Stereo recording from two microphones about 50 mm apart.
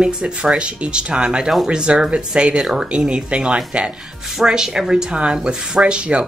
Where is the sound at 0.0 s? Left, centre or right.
Right.